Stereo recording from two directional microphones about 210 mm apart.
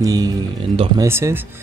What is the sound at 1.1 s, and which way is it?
Speech, 10° right (ahead or behind).